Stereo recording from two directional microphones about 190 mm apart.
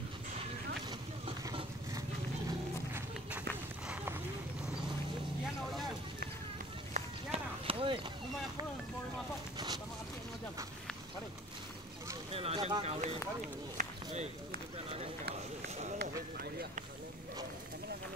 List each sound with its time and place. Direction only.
0.8 s vehicle: 25° right (ahead or behind)
2.9 s run: 10° right (ahead or behind)
6.9 s run: 30° right (ahead or behind)
12.3 s a sound: 30° right (ahead or behind)
13.7 s run: 40° right (ahead or behind)
16.0 s run: 55° right (ahead or behind)